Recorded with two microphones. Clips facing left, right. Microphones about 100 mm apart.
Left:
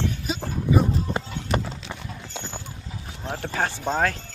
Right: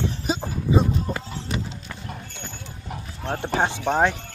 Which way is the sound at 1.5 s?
50° left (ahead or behind).